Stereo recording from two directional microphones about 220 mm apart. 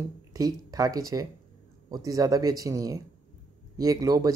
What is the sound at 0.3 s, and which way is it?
Speech, 15° right (ahead or behind).